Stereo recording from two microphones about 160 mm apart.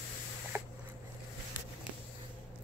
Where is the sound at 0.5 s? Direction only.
15° right (ahead or behind).